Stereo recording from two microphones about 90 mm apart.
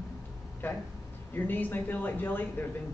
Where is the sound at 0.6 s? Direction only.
20° left (ahead or behind).